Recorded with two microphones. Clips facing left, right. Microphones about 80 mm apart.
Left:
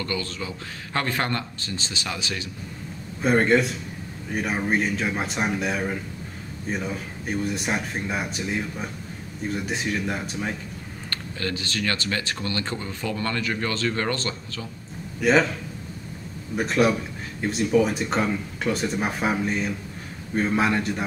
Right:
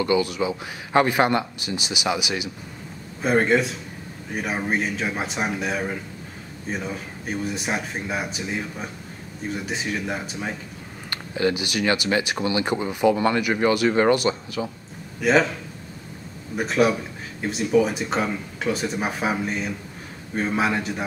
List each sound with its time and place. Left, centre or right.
0.0 s speech: centre
3.2 s speech: centre
11.1 s speech: centre
15.1 s speech: centre
16.5 s speech: centre